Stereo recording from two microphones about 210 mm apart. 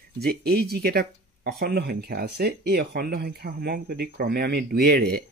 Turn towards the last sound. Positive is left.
turn(degrees=-45)  # may be behind; listen again after turning